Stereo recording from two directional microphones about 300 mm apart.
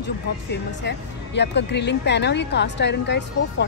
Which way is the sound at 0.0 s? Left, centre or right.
Left.